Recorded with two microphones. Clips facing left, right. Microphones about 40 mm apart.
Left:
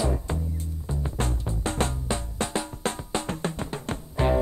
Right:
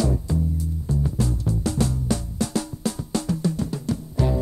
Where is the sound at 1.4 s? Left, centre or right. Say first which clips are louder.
Right 3 dB; left.